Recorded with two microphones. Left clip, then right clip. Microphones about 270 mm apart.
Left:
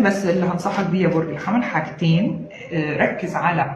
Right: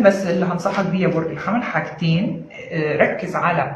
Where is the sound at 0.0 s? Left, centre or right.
Centre.